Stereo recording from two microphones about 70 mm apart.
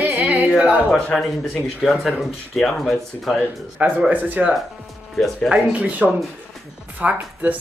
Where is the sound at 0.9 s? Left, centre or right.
Centre.